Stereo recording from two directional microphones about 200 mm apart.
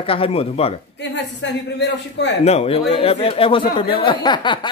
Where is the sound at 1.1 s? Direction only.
60° left (ahead or behind).